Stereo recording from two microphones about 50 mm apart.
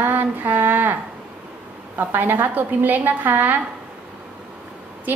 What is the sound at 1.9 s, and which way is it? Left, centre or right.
A woman's voice, right.